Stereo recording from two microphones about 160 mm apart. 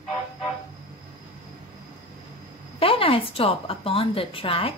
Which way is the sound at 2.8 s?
35° left (ahead or behind).